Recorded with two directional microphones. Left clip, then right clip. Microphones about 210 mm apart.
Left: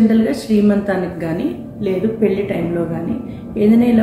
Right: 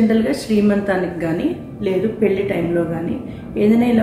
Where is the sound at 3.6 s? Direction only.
5° right (ahead or behind).